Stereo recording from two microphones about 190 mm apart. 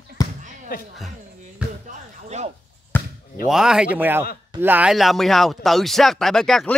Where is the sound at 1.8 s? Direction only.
35° right (ahead or behind).